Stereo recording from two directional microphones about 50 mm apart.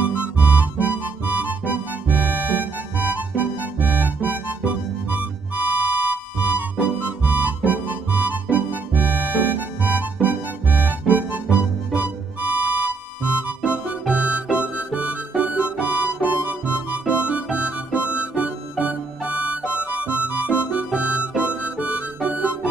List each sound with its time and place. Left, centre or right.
0.4 s music: right
14.1 s music: right
15.8 s harmonica: right
17.3 s music: right
21.5 s harmonica: right